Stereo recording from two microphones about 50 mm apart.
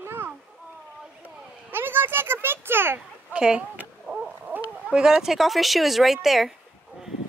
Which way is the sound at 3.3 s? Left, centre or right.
Centre.